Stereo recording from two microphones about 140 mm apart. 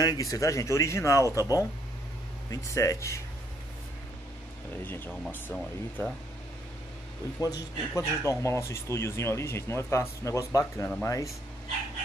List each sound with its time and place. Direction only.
0.0 s a man's voice: 25° left (ahead or behind)
2.5 s a man's voice: 20° left (ahead or behind)
4.8 s speech: 15° left (ahead or behind)
7.3 s a man's voice: 20° left (ahead or behind)